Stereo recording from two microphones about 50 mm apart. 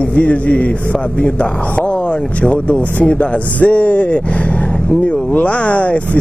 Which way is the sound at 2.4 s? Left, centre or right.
Left.